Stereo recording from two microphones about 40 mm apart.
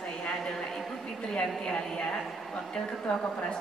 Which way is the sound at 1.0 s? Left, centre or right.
Left.